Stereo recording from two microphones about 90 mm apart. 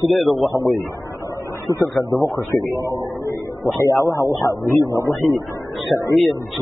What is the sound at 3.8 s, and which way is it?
Speech, 40° left (ahead or behind).